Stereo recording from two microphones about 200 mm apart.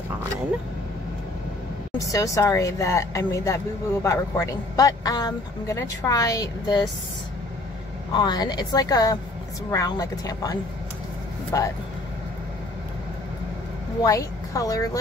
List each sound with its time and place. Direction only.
1.9 s speech: 15° left (ahead or behind)
8.1 s a woman's voice: 20° left (ahead or behind)
14.0 s a woman's voice: 15° left (ahead or behind)